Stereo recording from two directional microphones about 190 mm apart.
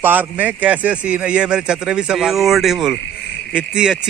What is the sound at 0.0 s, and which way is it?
A man's voice, 10° right (ahead or behind).